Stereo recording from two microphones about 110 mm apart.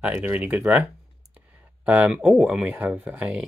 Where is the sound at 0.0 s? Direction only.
10° right (ahead or behind).